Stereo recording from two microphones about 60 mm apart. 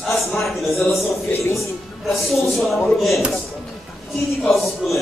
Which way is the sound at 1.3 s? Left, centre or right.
Left.